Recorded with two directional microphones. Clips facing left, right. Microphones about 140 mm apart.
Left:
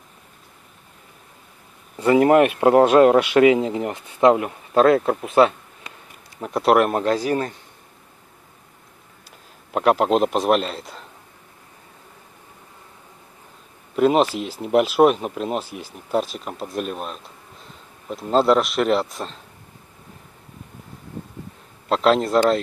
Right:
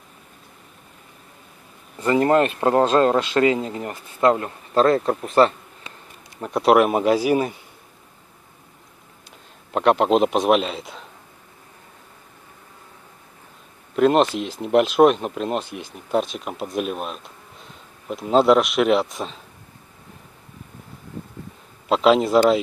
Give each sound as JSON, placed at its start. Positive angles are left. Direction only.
{"t": 2.0, "sound": "speech", "side_deg": 10}
{"t": 5.9, "sound": "bee", "side_deg": -25}
{"t": 6.4, "sound": "speech", "side_deg": 0}
{"t": 9.7, "sound": "speech", "side_deg": 5}
{"t": 13.9, "sound": "speech", "side_deg": 5}
{"t": 21.8, "sound": "speech", "side_deg": -5}